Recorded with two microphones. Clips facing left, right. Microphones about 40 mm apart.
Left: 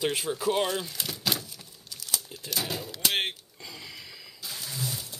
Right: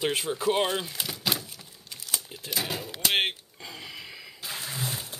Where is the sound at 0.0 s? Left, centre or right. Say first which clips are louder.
Right 1 dB; centre.